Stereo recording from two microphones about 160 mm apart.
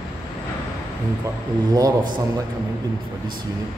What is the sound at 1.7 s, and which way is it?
Speech, 20° right (ahead or behind).